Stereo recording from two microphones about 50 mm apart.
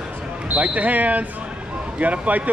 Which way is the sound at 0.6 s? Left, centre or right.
Right.